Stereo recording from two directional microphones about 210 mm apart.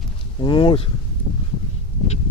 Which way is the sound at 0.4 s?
25° left (ahead or behind).